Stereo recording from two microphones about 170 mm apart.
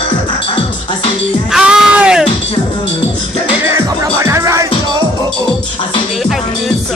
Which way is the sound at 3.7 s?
15° right (ahead or behind).